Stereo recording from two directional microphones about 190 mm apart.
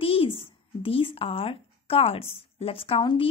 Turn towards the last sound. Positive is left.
turn(degrees=25)  # may be behind; listen again after turning